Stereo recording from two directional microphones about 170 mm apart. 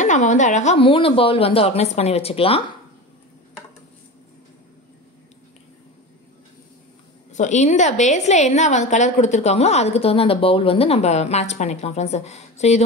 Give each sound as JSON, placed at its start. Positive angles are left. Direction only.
{"t": 0.0, "sound": "a woman's voice", "side_deg": 45}
{"t": 7.3, "sound": "a woman's voice", "side_deg": 45}